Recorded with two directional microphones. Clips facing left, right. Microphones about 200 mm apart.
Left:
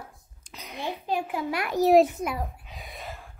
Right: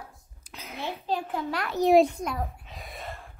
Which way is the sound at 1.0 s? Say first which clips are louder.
Left 1 dB; 10° left (ahead or behind).